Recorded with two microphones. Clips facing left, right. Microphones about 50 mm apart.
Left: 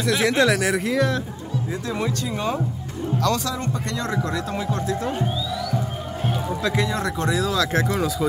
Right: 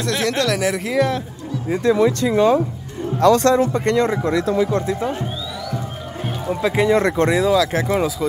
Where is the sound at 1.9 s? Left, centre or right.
Right.